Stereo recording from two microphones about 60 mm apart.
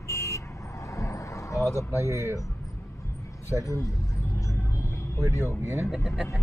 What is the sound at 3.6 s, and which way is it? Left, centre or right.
Speech, left.